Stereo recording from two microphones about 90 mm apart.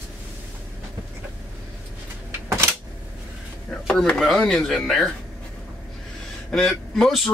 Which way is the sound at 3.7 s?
10° left (ahead or behind).